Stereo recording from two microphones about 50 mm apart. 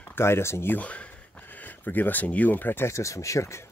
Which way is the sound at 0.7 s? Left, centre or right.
Left.